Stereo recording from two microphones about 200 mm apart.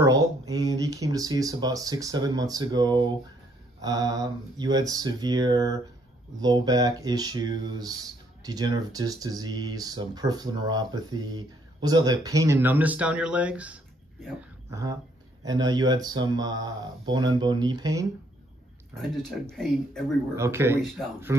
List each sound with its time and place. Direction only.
0.0 s speech: 15° right (ahead or behind)
14.7 s speech: 15° right (ahead or behind)
19.5 s speech: centre (ahead or behind)
20.3 s speech: 15° right (ahead or behind)